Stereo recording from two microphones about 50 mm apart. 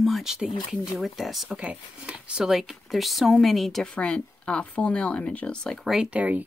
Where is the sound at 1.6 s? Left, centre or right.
Right.